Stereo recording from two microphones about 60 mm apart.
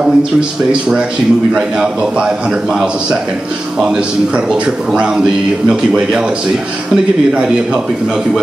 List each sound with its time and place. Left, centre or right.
0.0 s speech: centre
4.5 s speech: centre
7.3 s speech: centre